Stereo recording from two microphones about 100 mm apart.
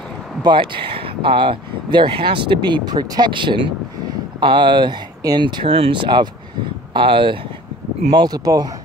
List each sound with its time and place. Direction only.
0.4 s speech: 50° right (ahead or behind)
5.6 s speech: 60° right (ahead or behind)
8.2 s speech: 40° right (ahead or behind)